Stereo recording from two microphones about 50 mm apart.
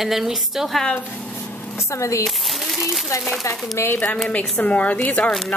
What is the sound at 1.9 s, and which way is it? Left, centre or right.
Speech, left.